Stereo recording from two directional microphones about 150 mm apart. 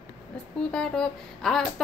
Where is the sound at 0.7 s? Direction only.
5° left (ahead or behind).